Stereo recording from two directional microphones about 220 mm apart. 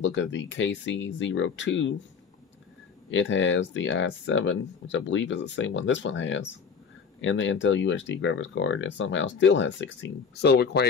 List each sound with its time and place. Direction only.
0.0 s speech: 55° left (ahead or behind)
3.1 s speech: 55° left (ahead or behind)